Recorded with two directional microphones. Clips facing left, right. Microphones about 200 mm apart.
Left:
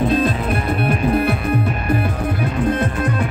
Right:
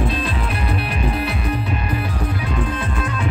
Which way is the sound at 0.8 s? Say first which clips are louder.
Left 6 dB; 50° left (ahead or behind).